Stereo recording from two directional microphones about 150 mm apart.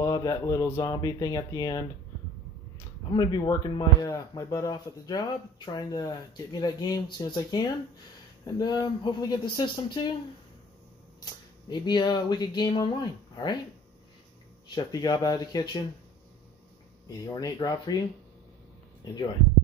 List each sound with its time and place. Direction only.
0.0 s speech: 25° left (ahead or behind)
3.1 s speech: 30° left (ahead or behind)
11.7 s speech: 30° left (ahead or behind)
14.7 s speech: 25° left (ahead or behind)
17.3 s speech: 25° left (ahead or behind)